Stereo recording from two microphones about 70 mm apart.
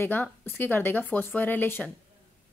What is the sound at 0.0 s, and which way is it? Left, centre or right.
A woman's voice, left.